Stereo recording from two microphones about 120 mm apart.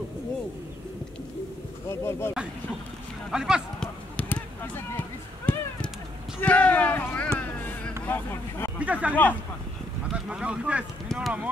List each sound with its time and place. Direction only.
1.9 s speech: 20° left (ahead or behind)
3.3 s speech: 5° right (ahead or behind)
3.8 s a sound: 10° left (ahead or behind)
8.0 s vehicle: 15° left (ahead or behind)
8.7 s speech: 10° right (ahead or behind)
9.1 s speech: 15° left (ahead or behind)
10.2 s speech: 10° right (ahead or behind)